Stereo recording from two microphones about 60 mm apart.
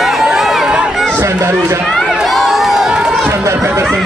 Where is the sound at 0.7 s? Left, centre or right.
Centre.